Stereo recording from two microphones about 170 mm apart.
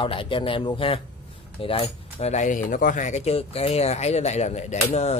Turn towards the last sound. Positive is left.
turn(degrees=40)  # may be behind; listen again after turning